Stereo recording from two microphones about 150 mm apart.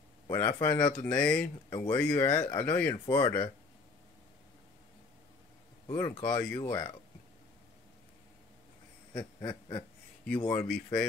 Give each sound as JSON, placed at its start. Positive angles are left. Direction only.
{"t": 0.3, "sound": "speech", "side_deg": 20}
{"t": 5.9, "sound": "speech", "side_deg": 15}
{"t": 9.1, "sound": "a sound", "side_deg": 25}
{"t": 10.2, "sound": "speech", "side_deg": 10}